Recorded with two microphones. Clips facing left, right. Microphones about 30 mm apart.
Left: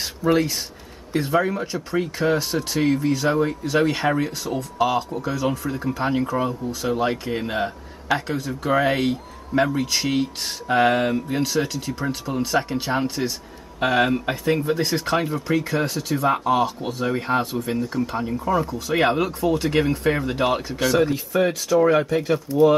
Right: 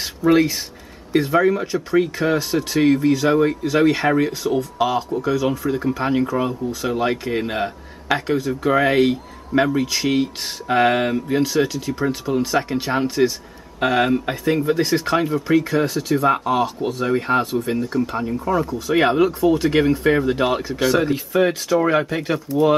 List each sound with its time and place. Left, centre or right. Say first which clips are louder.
0.0 s a sound: right 4 dB; centre
1.2 s a man's voice: right 3 dB; centre
2.1 s speech: right 2 dB; centre
2.8 s a man's voice: right 5 dB; centre
3.1 s speech: right 4 dB; centre
5.7 s speech: right 5 dB; centre
5.9 s a man's voice: right 2 dB; centre
11.4 s a man's voice: right 4 dB; centre